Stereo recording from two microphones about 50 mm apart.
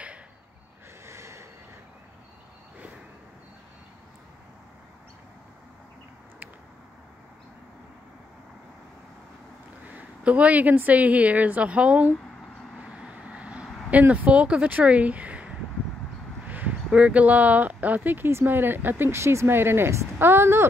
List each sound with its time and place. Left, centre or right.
1.0 s snort: right
9.8 s a woman's voice: right
12.7 s vehicle: centre
13.8 s a woman's voice: right
19.0 s speech: right